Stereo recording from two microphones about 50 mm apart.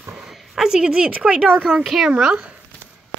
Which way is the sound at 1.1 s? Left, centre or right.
Right.